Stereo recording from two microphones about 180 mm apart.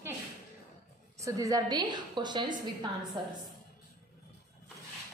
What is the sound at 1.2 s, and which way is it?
A woman's voice, 20° right (ahead or behind).